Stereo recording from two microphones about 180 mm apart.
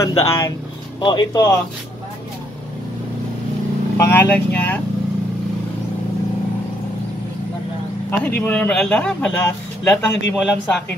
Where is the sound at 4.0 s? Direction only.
10° left (ahead or behind).